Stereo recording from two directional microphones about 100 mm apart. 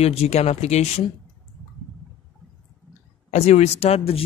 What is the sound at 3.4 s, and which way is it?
Speech, 90° left.